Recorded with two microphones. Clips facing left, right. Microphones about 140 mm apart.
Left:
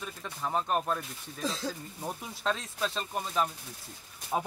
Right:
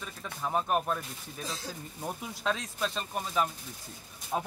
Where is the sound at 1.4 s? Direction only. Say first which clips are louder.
Left 6 dB; 90° left.